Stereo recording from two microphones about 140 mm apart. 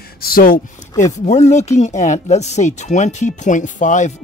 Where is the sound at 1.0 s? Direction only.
55° left (ahead or behind).